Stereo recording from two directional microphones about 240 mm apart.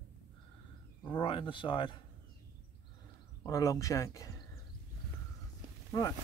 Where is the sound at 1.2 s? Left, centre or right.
Left.